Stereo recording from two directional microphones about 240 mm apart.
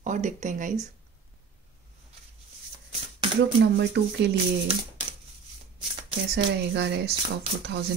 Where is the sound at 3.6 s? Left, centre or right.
Right.